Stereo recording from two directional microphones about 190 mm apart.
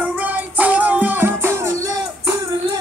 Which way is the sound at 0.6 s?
10° right (ahead or behind).